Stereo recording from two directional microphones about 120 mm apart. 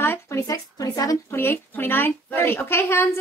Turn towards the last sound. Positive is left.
turn(degrees=20)  # may be behind; listen again after turning